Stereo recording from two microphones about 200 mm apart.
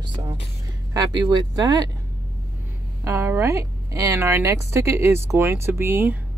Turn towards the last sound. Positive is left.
turn(degrees=-10)  # may be behind; listen again after turning